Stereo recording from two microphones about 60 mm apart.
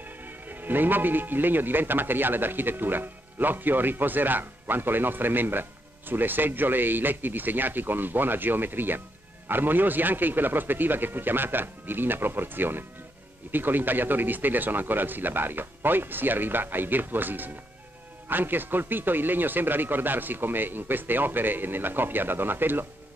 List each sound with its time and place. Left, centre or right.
0.0 s a man's voice: right